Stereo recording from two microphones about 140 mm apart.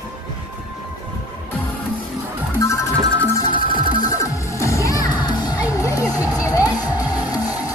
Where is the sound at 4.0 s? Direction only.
25° left (ahead or behind).